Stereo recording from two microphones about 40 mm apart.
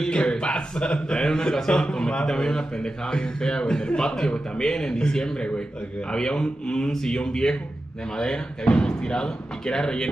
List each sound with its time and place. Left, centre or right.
0.1 s a man's voice: left
8.6 s a man's voice: left